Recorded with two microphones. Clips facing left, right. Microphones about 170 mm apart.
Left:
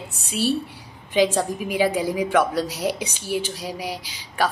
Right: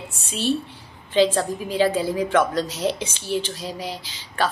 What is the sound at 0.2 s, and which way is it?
A woman's voice, 10° left (ahead or behind).